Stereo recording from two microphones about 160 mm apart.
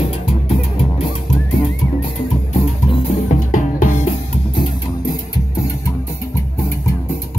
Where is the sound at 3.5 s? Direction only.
55° left (ahead or behind).